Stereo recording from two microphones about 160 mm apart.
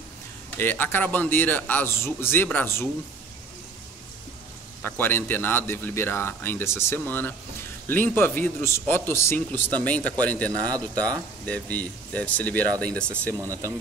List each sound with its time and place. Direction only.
0.6 s speech: 15° left (ahead or behind)
4.8 s speech: 10° left (ahead or behind)
13.4 s speech: 20° right (ahead or behind)